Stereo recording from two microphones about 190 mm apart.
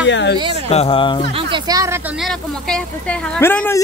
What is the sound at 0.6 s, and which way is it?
Speech, 30° left (ahead or behind).